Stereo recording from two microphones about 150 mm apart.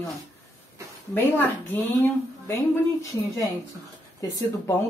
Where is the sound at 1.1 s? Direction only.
15° left (ahead or behind).